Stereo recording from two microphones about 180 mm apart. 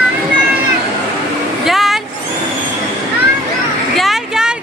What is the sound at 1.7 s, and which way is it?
Vehicle, centre (ahead or behind).